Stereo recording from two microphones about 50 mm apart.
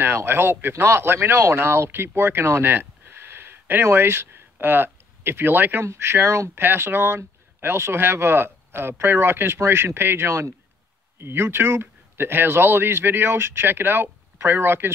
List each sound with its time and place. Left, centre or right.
0.0 s speech: right
0.8 s speech: right
2.7 s a sound: right
5.8 s speech: right
6.6 s speech: right
11.1 s speech: right